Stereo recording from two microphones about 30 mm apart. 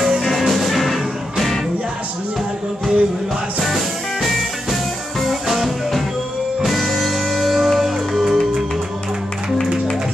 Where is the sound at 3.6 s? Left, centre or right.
Centre.